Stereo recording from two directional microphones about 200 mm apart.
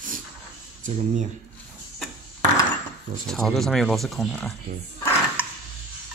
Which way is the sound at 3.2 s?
Centre (ahead or behind).